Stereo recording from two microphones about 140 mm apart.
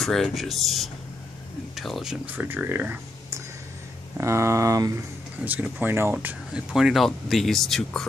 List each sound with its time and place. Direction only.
0.0 s speech: centre (ahead or behind)
2.2 s speech: 15° right (ahead or behind)
5.4 s speech: 10° right (ahead or behind)
6.1 s speech: 5° right (ahead or behind)